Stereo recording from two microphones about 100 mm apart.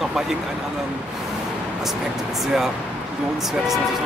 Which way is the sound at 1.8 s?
Centre (ahead or behind).